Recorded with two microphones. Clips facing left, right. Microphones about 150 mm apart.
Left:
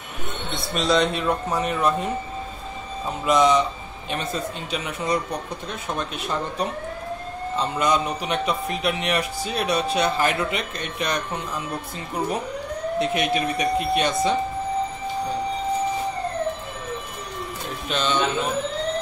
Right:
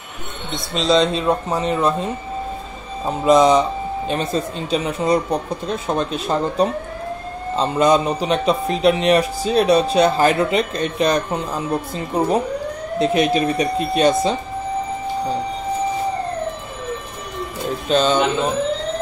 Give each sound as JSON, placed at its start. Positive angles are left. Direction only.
{"t": 0.7, "sound": "speech", "side_deg": -25}
{"t": 3.1, "sound": "a man's voice", "side_deg": -35}
{"t": 13.0, "sound": "a man's voice", "side_deg": -30}
{"t": 17.8, "sound": "a man's voice", "side_deg": -35}